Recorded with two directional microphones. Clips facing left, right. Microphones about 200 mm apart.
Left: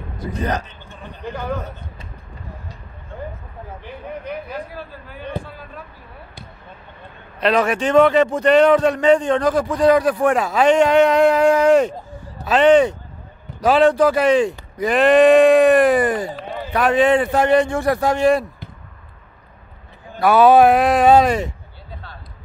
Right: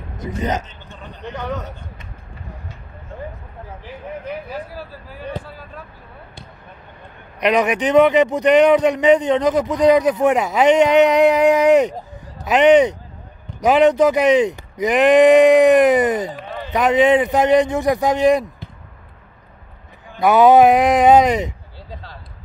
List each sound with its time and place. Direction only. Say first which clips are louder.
0.2 s a man's voice: right 1 dB; 20° right (ahead or behind)
3.8 s speech: right 1 dB; 5° right (ahead or behind)
7.3 s a man's voice: right 1 dB; 15° right (ahead or behind)
20.2 s speech: right 1 dB; 20° right (ahead or behind)